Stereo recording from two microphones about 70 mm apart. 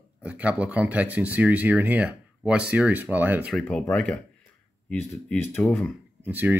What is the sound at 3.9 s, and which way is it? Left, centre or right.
Speech, centre.